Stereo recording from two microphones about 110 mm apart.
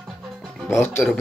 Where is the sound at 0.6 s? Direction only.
20° left (ahead or behind).